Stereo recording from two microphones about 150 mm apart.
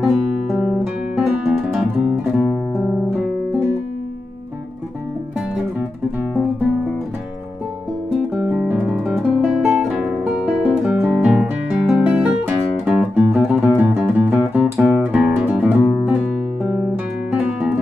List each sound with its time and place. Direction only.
0.7 s guitar: 5° right (ahead or behind)
8.1 s guitar: 5° right (ahead or behind)
14.5 s music: 10° right (ahead or behind)
17.3 s guitar: 5° right (ahead or behind)